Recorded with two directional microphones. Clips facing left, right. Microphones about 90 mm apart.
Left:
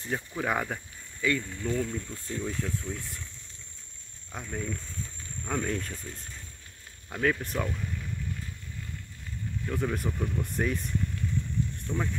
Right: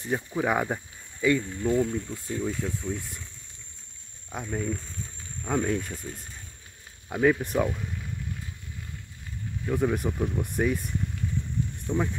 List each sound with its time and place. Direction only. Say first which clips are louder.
0.0 s speech: right 4 dB; 15° right (ahead or behind)
4.3 s speech: right 4 dB; 15° right (ahead or behind)
7.1 s speech: right 5 dB; 15° right (ahead or behind)
9.7 s speech: right 5 dB; 15° right (ahead or behind)
11.9 s speech: right 6 dB; 15° right (ahead or behind)